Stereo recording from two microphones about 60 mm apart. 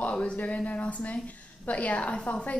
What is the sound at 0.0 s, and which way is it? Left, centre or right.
Speech, centre.